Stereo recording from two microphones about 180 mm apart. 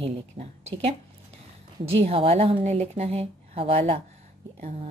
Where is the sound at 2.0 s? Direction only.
35° right (ahead or behind).